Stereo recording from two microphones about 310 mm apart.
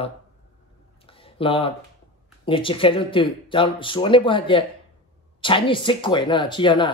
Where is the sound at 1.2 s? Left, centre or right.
Centre.